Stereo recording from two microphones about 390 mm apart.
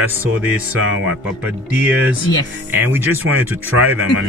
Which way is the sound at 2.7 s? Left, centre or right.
Centre.